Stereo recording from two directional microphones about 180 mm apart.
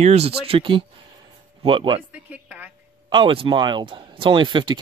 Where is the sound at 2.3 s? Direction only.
10° right (ahead or behind).